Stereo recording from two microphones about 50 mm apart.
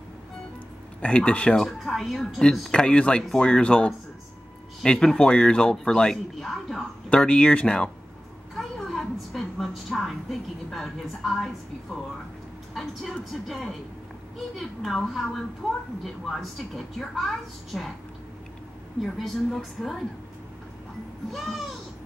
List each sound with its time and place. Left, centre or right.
1.0 s speech: left
1.6 s a woman's voice: centre
2.7 s speech: centre
4.8 s speech: centre
7.1 s speech: left
8.5 s a sound: centre
10.7 s a woman's voice: centre
19.1 s a woman's voice: centre